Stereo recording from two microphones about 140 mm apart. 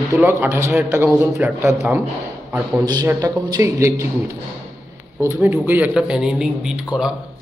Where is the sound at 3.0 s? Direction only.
25° right (ahead or behind).